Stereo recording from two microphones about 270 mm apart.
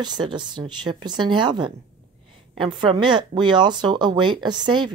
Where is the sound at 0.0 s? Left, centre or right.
Centre.